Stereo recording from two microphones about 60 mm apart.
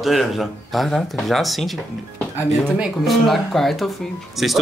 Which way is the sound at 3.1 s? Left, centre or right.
Centre.